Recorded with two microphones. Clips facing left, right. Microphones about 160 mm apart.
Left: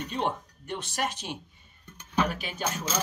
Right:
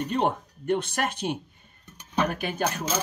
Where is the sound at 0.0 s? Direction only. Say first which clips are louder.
Right 5 dB; 50° right (ahead or behind).